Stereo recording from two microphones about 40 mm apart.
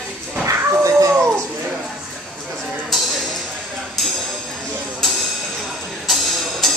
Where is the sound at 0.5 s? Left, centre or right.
Right.